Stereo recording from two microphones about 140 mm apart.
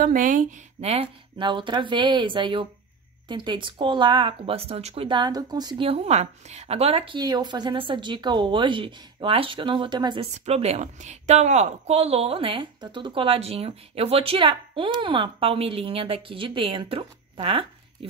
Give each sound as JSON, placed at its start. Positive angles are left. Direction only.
{"t": 0.0, "sound": "speech", "side_deg": -70}
{"t": 5.9, "sound": "a woman's voice", "side_deg": -50}
{"t": 7.2, "sound": "speech", "side_deg": -30}
{"t": 10.3, "sound": "a woman's voice", "side_deg": -50}